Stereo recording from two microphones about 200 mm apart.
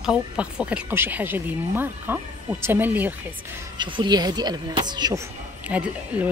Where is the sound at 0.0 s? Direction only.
5° right (ahead or behind).